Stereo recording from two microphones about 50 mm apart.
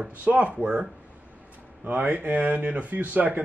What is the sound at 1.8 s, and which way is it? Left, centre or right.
Speech, right.